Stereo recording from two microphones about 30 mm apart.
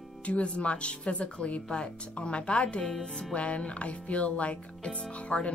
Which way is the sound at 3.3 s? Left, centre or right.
Left.